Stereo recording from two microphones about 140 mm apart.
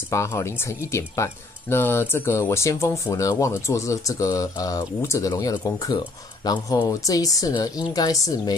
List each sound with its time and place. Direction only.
0.1 s speech: 20° left (ahead or behind)